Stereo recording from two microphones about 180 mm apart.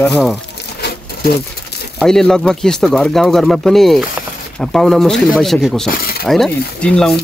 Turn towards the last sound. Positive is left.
turn(degrees=5)  # may be behind; listen again after turning